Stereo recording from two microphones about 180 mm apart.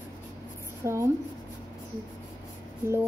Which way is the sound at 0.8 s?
15° right (ahead or behind).